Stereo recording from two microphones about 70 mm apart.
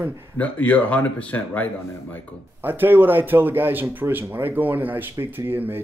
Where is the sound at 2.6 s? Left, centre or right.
Right.